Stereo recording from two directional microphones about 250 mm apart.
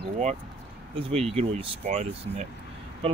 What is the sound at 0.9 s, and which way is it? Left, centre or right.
Speech, right.